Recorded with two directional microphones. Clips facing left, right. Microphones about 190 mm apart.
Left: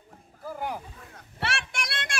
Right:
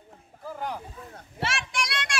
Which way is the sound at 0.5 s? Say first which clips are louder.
Left 1 dB; 10° left (ahead or behind).